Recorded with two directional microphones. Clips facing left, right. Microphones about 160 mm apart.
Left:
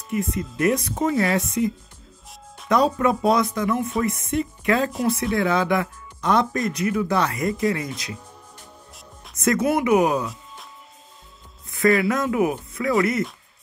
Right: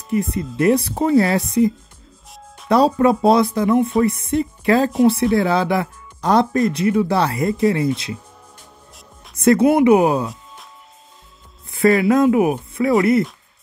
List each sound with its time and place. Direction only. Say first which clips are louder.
0.1 s speech: right 5 dB; 35° right (ahead or behind)
2.3 s music: right 3 dB; centre (ahead or behind)
2.7 s speech: right 5 dB; 30° right (ahead or behind)
9.3 s speech: right 7 dB; 30° right (ahead or behind)
11.7 s speech: right 5 dB; 30° right (ahead or behind)